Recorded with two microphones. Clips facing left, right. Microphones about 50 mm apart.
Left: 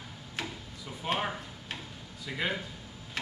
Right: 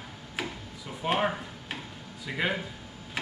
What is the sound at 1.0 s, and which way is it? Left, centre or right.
Speech, centre.